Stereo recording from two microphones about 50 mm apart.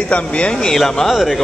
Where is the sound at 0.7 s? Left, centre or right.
Centre.